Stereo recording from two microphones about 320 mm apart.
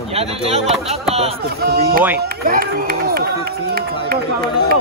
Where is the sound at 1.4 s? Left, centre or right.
Right.